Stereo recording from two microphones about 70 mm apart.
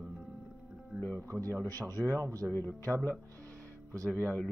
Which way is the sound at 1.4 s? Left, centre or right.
Right.